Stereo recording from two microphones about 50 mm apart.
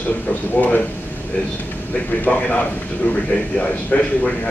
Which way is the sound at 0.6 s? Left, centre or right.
Left.